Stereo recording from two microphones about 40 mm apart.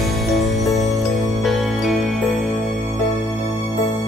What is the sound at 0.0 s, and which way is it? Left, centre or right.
Music, centre.